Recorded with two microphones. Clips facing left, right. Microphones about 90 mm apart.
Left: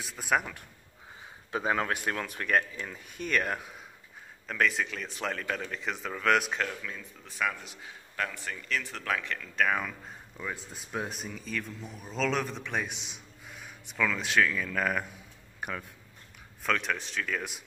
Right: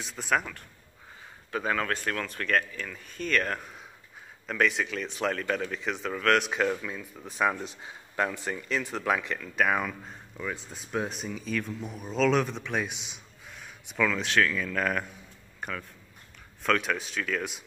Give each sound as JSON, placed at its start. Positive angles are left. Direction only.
{"t": 0.0, "sound": "speech", "side_deg": 5}
{"t": 6.6, "sound": "speech", "side_deg": -10}
{"t": 7.3, "sound": "a man's voice", "side_deg": -25}
{"t": 15.6, "sound": "a sound", "side_deg": 10}
{"t": 16.6, "sound": "speech", "side_deg": 0}